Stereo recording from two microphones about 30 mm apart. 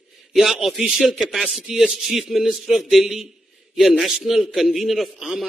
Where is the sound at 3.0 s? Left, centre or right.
Centre.